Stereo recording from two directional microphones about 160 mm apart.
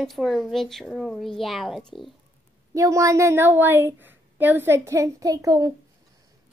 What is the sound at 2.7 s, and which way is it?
A woman's voice, 20° right (ahead or behind).